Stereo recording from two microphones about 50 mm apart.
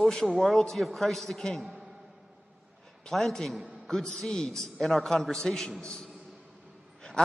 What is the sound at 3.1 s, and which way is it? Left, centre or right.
A man's voice, centre.